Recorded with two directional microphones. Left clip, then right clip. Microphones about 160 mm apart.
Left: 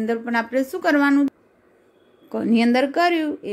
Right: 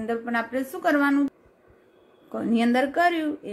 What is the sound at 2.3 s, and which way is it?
A woman's voice, 40° left (ahead or behind).